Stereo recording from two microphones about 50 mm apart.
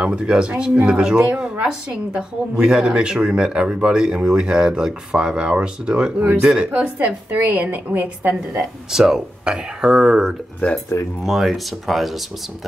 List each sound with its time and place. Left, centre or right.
0.0 s a woman's voice: centre; by 8.4 s right
8.5 s a woman's voice: centre
11.2 s speech: centre